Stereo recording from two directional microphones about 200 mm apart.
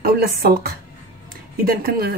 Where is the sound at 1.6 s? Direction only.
50° right (ahead or behind).